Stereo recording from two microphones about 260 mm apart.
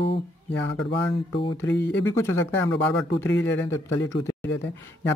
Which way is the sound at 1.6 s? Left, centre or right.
Centre.